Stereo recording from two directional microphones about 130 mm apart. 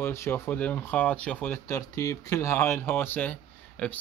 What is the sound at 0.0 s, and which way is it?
Speech, 20° left (ahead or behind).